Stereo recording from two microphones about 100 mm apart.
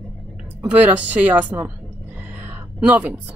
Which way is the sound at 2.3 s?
15° right (ahead or behind).